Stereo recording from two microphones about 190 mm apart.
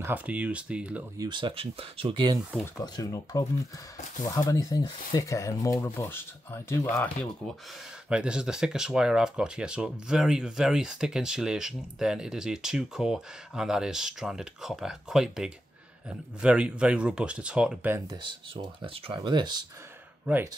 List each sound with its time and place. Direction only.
0.0 s speech: 10° right (ahead or behind)
1.1 s speech: 20° right (ahead or behind)
2.6 s speech: 20° left (ahead or behind)
4.5 s speech: 20° left (ahead or behind)
8.1 s speech: 5° right (ahead or behind); by 19.6 s 25° right (ahead or behind)